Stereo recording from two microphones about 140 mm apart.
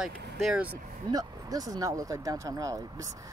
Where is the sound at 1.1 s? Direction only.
25° right (ahead or behind).